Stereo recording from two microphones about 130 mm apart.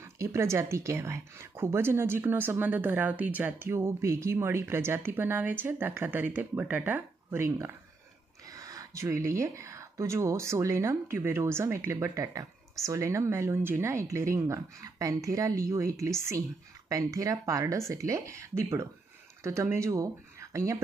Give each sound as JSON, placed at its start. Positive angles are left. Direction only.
{"t": 0.0, "sound": "speech", "side_deg": -20}